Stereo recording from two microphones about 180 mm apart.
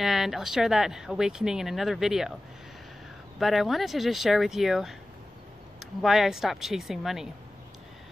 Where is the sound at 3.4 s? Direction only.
Centre (ahead or behind).